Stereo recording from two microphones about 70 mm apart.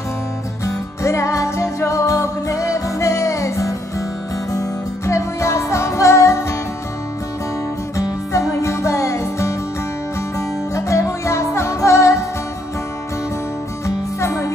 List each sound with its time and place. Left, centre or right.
1.0 s music: left
8.0 s music: left
10.7 s music: left
13.8 s music: left